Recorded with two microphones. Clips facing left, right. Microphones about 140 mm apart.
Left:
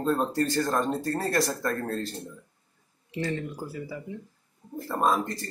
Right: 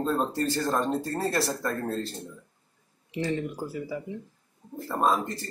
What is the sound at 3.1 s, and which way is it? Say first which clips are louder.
Speech: right 2 dB; 20° right (ahead or behind).